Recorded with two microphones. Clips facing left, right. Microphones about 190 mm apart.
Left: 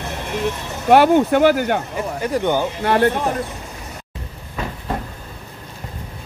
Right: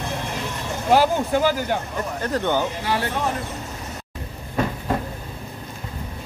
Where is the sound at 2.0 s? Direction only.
10° left (ahead or behind).